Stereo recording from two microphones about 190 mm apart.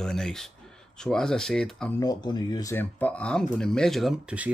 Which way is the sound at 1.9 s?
20° left (ahead or behind).